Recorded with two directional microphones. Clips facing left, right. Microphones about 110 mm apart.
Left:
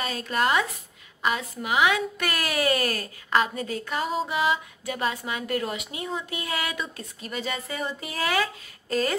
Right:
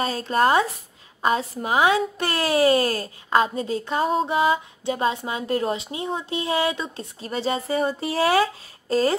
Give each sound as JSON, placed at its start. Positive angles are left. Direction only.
{"t": 0.0, "sound": "a woman's voice", "side_deg": -30}